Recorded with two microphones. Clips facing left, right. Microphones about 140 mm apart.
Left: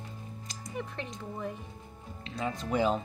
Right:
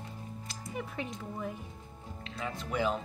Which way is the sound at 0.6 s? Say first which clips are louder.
Even; 5° right (ahead or behind).